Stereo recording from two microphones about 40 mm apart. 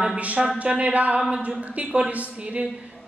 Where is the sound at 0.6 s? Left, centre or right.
Right.